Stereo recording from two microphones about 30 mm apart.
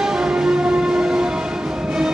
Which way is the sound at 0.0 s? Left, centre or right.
Centre.